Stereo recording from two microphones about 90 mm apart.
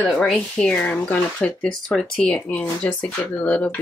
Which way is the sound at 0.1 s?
5° left (ahead or behind).